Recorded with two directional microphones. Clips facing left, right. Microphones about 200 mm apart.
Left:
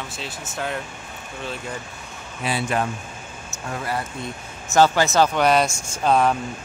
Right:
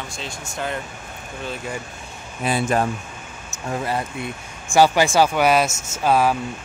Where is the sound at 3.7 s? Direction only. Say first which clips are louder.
Right 3 dB; 20° right (ahead or behind).